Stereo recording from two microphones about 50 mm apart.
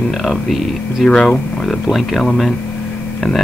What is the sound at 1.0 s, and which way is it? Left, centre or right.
Speech, centre.